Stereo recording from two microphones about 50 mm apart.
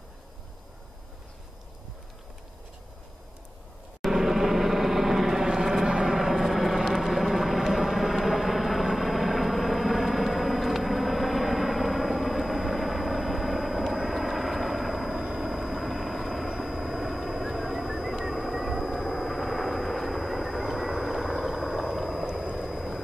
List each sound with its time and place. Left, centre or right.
4.1 s vehicle: centre
5.9 s a sound: centre
6.1 s vehicle: centre